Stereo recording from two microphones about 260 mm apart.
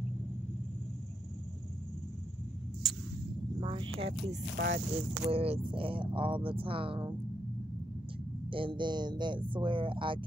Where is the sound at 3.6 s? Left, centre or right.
Centre.